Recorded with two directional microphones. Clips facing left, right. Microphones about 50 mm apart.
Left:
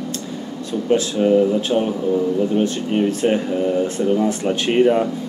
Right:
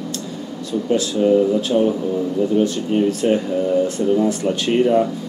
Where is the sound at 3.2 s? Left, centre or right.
Left.